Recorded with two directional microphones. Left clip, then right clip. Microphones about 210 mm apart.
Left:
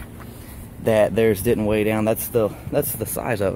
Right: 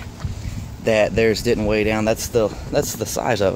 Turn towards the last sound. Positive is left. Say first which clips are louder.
# right 4 dB
turn(degrees=-5)  # may be behind; listen again after turning